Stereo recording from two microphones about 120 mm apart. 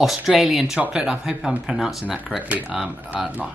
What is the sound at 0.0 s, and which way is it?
Speech, 5° right (ahead or behind).